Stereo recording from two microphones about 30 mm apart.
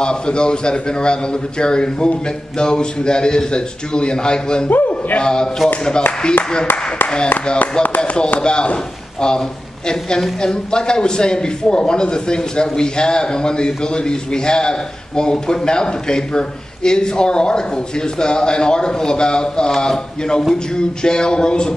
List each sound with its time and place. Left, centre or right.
0.0 s a man's voice: left
4.6 s a man's voice: left
5.2 s a man's voice: left
8.4 s a man's voice: left